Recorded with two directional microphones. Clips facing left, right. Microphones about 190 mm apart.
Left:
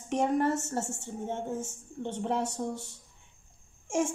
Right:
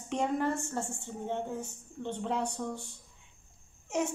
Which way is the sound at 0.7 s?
75° left (ahead or behind).